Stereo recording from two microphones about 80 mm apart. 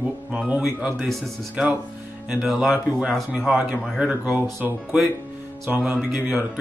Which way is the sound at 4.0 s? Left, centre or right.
Centre.